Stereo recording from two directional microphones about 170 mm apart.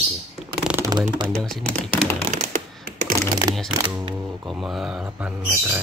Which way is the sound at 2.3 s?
45° right (ahead or behind).